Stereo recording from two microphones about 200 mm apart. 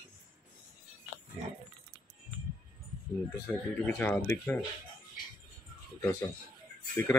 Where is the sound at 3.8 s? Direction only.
10° left (ahead or behind).